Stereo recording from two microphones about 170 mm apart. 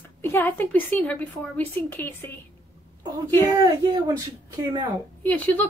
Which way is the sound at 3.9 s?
20° right (ahead or behind).